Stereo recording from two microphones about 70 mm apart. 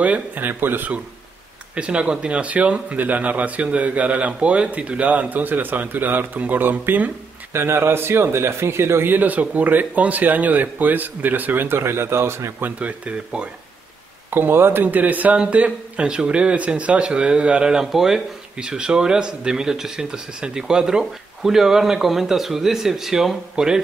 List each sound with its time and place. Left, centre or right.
0.0 s a man's voice: right
1.8 s a man's voice: centre
7.5 s speech: right
12.6 s a man's voice: centre
14.3 s speech: right; by 23.8 s centre